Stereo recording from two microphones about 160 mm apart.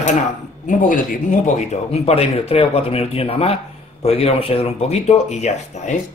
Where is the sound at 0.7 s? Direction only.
55° left (ahead or behind).